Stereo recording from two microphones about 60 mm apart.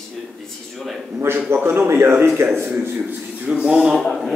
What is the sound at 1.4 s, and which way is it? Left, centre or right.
Speech, right.